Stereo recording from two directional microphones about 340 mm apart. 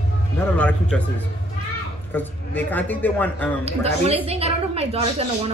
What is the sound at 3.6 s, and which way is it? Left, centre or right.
A woman's voice, centre.